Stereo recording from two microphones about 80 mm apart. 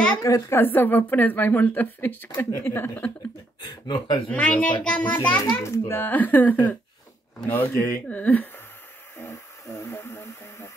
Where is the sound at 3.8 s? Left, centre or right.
Left.